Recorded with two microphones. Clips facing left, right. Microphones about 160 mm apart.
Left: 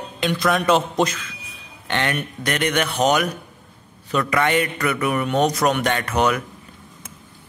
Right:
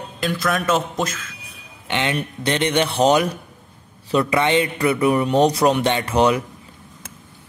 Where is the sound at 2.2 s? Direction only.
30° right (ahead or behind).